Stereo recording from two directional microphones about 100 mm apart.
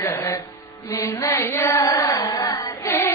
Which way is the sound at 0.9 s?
40° left (ahead or behind).